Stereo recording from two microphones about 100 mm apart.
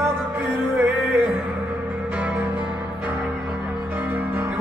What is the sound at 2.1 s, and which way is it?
Music, 15° right (ahead or behind).